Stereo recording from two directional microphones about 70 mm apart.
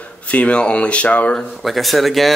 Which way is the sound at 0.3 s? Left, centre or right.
Centre.